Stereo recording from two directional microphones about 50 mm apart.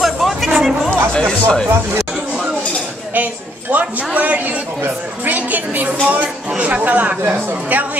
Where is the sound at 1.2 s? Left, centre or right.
Centre.